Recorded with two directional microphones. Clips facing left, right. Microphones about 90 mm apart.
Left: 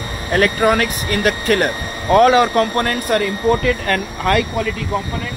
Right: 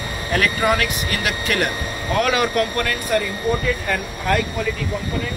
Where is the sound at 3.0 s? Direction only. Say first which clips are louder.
Left 4 dB; 60° left (ahead or behind); by 4.4 s 80° left.